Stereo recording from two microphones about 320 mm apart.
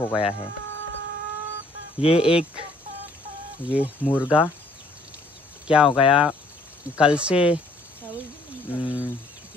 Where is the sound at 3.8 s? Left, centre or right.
Centre.